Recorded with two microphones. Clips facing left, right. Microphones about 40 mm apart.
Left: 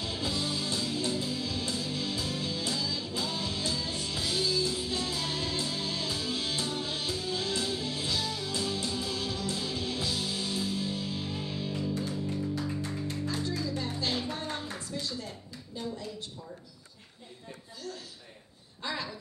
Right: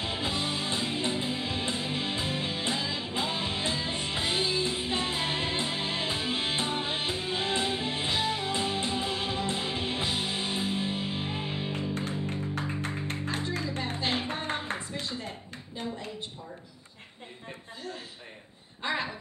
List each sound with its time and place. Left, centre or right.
0.0 s music: right
18.8 s speech: right